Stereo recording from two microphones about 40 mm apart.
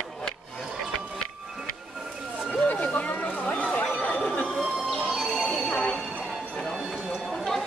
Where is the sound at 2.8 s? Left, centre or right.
Left.